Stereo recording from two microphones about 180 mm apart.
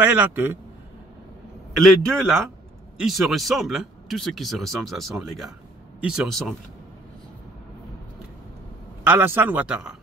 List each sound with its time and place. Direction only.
0.0 s a man's voice: 10° right (ahead or behind)
1.8 s speech: centre (ahead or behind)
9.0 s a man's voice: 10° right (ahead or behind)